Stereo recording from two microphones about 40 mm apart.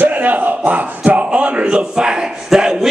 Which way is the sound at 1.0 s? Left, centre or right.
Right.